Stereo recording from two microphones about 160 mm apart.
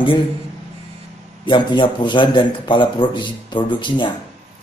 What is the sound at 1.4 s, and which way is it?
A man's voice, 30° left (ahead or behind).